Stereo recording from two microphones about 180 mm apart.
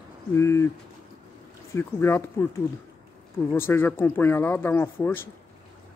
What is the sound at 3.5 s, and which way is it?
Speech, 15° left (ahead or behind).